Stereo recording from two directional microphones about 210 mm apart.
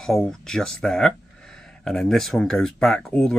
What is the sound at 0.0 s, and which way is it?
Speech, centre (ahead or behind).